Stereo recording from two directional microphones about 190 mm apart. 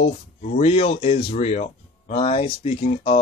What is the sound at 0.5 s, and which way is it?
Speech, 30° left (ahead or behind).